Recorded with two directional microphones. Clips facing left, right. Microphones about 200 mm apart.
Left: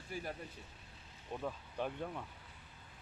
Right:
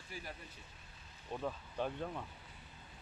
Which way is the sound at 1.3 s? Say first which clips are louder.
Right 1 dB; 10° left (ahead or behind).